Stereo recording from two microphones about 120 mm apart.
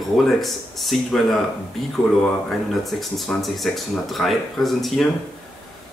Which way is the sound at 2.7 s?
Centre (ahead or behind).